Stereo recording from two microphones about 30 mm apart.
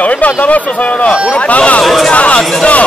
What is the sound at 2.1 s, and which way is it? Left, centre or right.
Speech, left.